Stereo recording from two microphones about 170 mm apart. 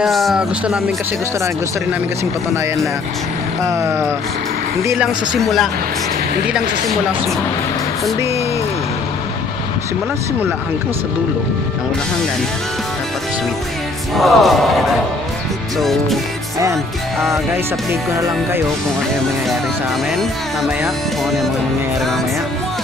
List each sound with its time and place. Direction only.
0.0 s music: centre (ahead or behind)
3.6 s speech: 15° right (ahead or behind)
4.8 s music: 5° right (ahead or behind)
14.1 s music: centre (ahead or behind)